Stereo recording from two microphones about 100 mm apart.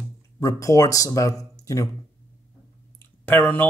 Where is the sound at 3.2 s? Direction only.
20° left (ahead or behind).